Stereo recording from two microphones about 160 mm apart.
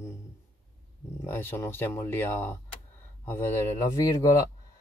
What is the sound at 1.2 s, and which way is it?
Speech, 15° left (ahead or behind).